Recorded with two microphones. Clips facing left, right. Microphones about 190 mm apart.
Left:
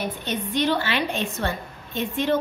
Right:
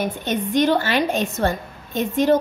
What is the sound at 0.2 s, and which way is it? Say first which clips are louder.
A woman's voice: right 6 dB; 45° right (ahead or behind).